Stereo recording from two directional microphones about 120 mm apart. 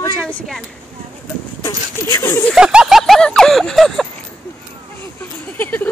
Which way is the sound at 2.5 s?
5° right (ahead or behind).